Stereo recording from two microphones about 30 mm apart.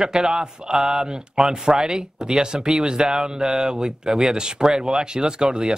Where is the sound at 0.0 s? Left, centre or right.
Right.